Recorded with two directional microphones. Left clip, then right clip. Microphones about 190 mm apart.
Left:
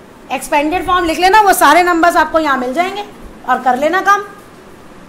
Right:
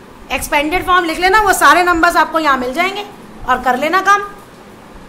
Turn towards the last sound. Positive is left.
turn(degrees=10)  # may be behind; listen again after turning